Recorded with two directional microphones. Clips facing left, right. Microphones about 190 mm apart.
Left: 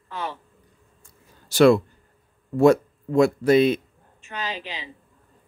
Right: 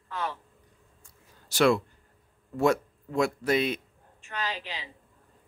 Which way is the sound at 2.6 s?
30° left (ahead or behind).